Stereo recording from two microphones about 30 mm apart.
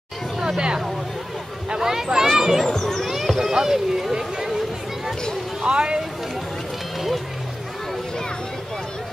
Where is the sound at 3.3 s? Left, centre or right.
Centre.